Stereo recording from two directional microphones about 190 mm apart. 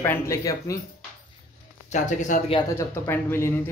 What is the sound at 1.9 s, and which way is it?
Speech, 40° left (ahead or behind).